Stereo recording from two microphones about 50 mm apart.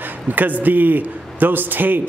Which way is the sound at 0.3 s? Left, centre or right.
Right.